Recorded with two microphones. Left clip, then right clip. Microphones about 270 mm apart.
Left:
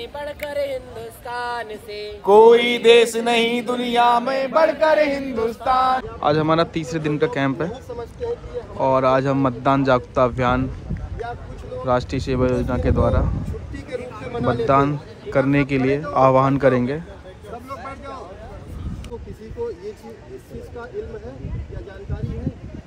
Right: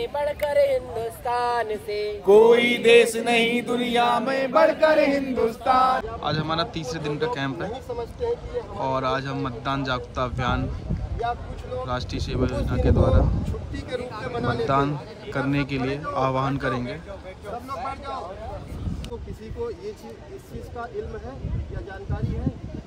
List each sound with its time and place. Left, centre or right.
0.0 s speech: right
2.2 s mantra: centre
6.1 s a man's voice: centre
7.7 s speech: right
8.7 s a man's voice: centre
11.8 s a man's voice: centre
14.2 s a man's voice: centre
17.6 s a sound: centre